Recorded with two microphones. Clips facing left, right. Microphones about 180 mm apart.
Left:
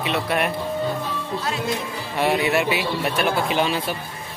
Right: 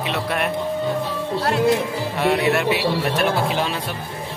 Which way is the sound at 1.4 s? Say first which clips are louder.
Right 9 dB; 65° right (ahead or behind).